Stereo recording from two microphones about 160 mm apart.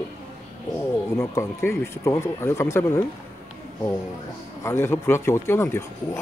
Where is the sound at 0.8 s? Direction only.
15° left (ahead or behind).